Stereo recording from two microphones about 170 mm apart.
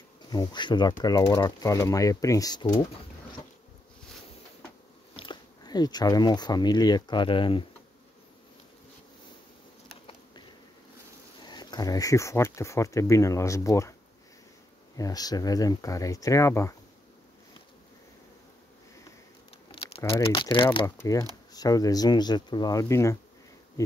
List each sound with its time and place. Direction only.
0.3 s speech: 25° left (ahead or behind)
5.1 s speech: 30° left (ahead or behind)
11.4 s speech: 25° left (ahead or behind)
15.0 s speech: 20° left (ahead or behind)
19.7 s crumpling: 30° left (ahead or behind)
20.0 s speech: 15° left (ahead or behind)
20.3 s speech: 30° left (ahead or behind)
20.8 s speech: 20° left (ahead or behind)